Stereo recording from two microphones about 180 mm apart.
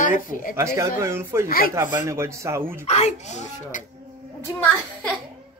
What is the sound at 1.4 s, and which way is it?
Speech, 55° left (ahead or behind).